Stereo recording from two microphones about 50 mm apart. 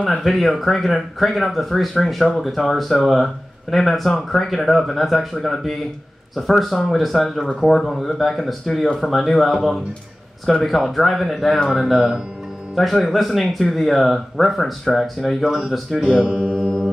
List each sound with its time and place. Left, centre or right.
0.0 s speech: centre
16.1 s mantra: right